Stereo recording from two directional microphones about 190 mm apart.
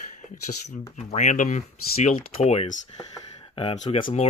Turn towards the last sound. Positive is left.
turn(degrees=35)  # may be behind; listen again after turning